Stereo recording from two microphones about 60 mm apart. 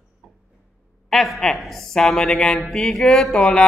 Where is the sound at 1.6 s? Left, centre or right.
Centre.